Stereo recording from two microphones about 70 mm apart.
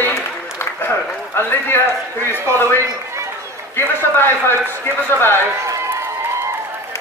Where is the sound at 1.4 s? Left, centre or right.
Left.